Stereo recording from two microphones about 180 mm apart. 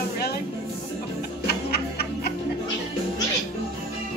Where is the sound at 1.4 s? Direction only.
60° left (ahead or behind).